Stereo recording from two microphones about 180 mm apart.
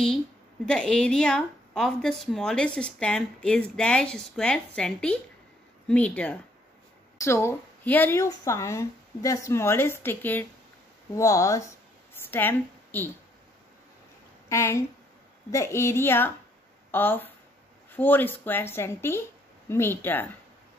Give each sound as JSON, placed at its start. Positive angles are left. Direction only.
{"t": 0.7, "sound": "a woman's voice", "side_deg": 5}
{"t": 12.1, "sound": "a sound", "side_deg": 10}
{"t": 14.5, "sound": "speech", "side_deg": 15}